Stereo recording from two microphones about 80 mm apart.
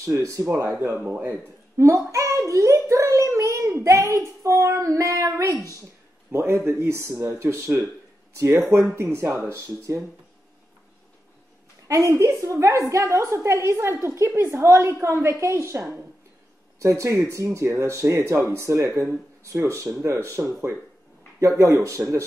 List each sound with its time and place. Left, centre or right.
0.0 s a woman's voice: right
1.8 s child singing: right
6.3 s a woman's voice: right
11.9 s a woman's voice: right